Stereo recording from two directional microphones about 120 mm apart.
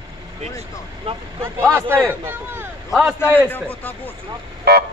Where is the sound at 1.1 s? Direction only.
50° right (ahead or behind).